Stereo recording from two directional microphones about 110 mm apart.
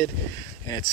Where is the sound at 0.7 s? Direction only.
35° left (ahead or behind).